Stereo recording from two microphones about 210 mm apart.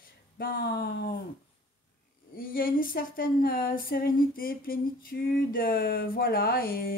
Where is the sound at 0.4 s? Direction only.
45° left (ahead or behind).